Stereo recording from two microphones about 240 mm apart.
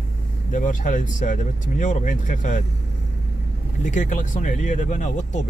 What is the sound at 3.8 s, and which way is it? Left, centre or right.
Speech, left.